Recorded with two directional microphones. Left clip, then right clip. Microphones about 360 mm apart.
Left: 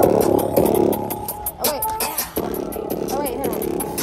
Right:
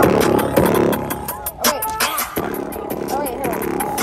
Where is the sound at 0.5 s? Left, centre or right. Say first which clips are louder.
Right 1 dB; right.